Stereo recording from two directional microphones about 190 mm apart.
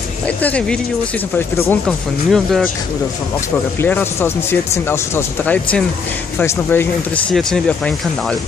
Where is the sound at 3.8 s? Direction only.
10° left (ahead or behind).